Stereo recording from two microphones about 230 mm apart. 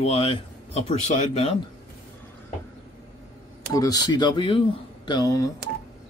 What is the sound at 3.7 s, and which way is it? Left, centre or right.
Speech, centre.